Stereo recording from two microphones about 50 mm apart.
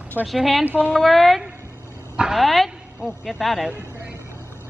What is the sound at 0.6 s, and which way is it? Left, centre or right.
Speech, right.